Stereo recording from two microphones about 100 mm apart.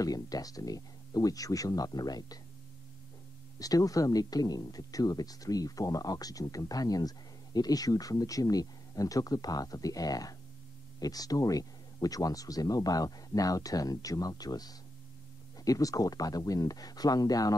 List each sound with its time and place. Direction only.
0.0 s speech: 40° left (ahead or behind)
3.5 s speech: 35° left (ahead or behind)